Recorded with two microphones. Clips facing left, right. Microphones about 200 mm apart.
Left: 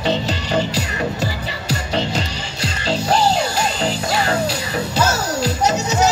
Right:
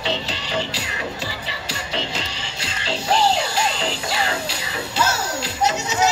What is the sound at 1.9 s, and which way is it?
Music, 40° left (ahead or behind).